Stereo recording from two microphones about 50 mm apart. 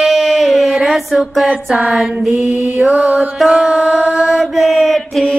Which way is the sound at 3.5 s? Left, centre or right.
Centre.